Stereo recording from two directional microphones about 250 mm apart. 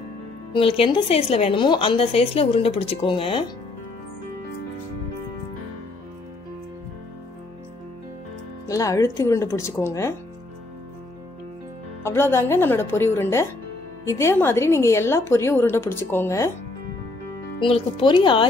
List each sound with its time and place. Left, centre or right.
0.5 s a woman's voice: left
8.6 s a woman's voice: centre
12.0 s a woman's voice: centre
17.6 s a woman's voice: left